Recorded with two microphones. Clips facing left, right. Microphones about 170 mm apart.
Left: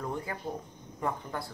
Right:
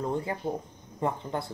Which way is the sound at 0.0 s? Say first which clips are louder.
Right 5 dB; 25° right (ahead or behind).